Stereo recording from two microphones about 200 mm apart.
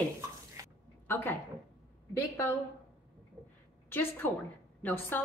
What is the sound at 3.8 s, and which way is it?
A woman's voice, 10° left (ahead or behind).